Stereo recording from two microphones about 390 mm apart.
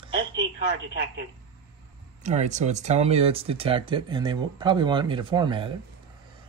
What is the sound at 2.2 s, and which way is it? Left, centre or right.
Speech, centre.